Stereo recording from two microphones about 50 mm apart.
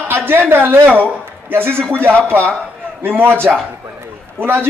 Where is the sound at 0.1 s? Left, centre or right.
Right.